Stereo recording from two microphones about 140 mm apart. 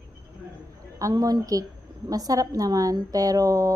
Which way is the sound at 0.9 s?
25° right (ahead or behind).